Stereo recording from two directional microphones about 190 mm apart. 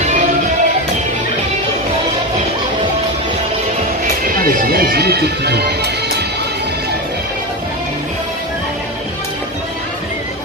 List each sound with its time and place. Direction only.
4.6 s speech: 55° right (ahead or behind)